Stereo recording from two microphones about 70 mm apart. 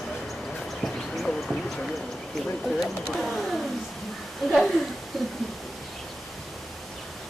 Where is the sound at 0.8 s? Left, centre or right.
Centre.